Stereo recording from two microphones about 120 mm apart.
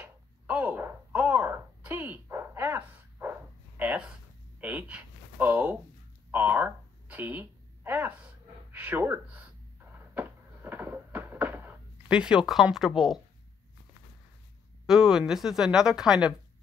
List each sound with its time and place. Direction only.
0.0 s a sound: 10° right (ahead or behind)
12.7 s a woman's voice: centre (ahead or behind)
14.9 s a woman's voice: 5° right (ahead or behind)